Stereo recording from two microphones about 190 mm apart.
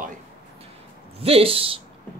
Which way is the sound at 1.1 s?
30° right (ahead or behind).